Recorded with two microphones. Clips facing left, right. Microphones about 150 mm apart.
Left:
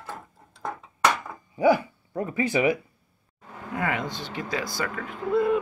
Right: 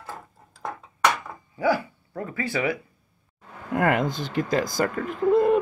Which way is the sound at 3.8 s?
50° right (ahead or behind).